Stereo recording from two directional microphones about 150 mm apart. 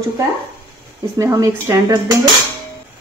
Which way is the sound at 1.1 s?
20° right (ahead or behind).